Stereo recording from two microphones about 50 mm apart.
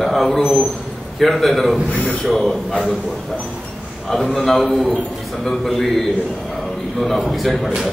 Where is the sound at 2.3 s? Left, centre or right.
Centre.